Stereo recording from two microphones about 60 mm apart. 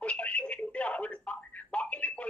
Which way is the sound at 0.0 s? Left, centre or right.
Left.